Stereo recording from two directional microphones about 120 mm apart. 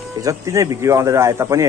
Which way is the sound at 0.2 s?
25° right (ahead or behind).